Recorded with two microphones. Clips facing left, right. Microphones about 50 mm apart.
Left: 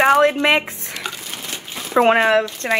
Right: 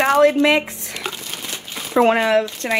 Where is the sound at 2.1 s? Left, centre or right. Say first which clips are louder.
Left 1 dB; left.